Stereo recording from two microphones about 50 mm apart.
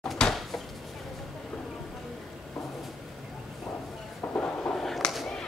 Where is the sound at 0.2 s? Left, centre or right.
Centre.